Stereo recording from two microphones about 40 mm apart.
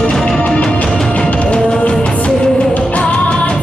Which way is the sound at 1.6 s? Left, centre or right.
Centre.